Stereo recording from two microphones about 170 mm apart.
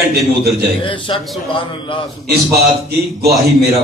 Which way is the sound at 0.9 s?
30° left (ahead or behind).